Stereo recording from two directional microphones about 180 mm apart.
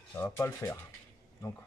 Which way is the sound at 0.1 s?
10° left (ahead or behind).